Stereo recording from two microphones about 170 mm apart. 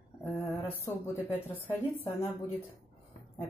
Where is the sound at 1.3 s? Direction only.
15° left (ahead or behind).